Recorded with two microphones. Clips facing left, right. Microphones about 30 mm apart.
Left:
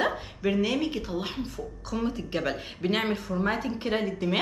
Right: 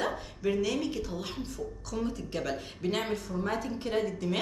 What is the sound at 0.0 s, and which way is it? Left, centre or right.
A woman's voice, left.